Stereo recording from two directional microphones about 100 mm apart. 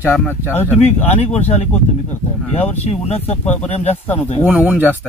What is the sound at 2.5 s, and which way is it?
Speech, 90° left.